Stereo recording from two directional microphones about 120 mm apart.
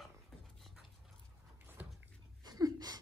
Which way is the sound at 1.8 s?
15° right (ahead or behind).